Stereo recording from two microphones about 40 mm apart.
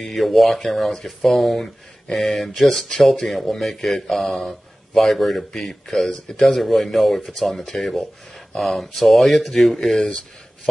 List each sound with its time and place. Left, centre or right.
0.0 s speech: centre
6.1 s speech: centre
6.4 s speech: centre